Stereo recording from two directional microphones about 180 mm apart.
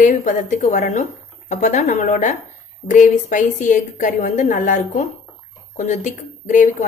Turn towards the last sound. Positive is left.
turn(degrees=45)  # may be behind; listen again after turning